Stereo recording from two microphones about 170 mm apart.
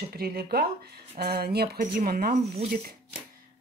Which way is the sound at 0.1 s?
65° right (ahead or behind).